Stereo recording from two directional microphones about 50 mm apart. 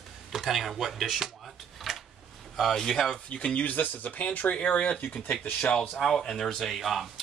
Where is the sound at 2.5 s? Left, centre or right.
Centre.